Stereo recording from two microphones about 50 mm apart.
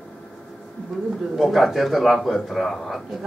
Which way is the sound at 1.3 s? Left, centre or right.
Centre.